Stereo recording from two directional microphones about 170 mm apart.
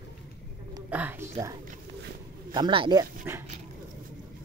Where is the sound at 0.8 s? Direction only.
10° right (ahead or behind).